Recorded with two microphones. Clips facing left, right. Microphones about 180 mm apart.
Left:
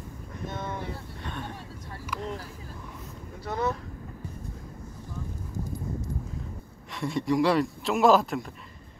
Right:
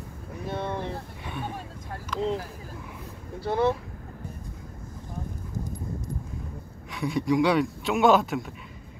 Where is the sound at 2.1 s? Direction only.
10° left (ahead or behind).